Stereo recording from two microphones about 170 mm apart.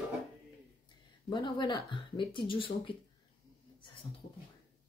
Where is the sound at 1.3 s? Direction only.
25° left (ahead or behind).